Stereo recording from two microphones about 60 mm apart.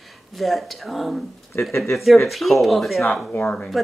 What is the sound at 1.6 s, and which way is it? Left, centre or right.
Speech, left.